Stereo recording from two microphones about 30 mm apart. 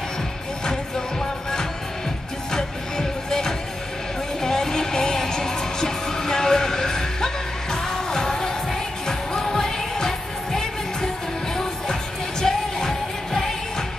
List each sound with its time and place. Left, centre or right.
0.7 s music: centre
7.7 s music of asia: left
9.0 s music: centre